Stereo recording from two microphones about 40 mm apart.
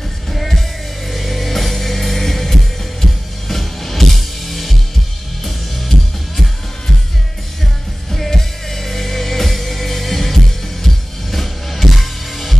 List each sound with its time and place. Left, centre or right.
0.3 s music: centre
8.1 s music: centre